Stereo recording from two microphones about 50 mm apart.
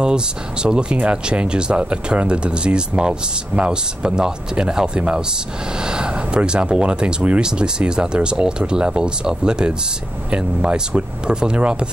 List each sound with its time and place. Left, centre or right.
0.0 s speech: centre